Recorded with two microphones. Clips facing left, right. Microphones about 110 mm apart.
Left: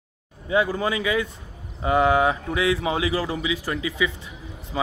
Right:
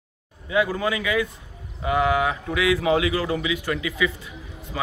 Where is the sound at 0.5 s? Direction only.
30° left (ahead or behind).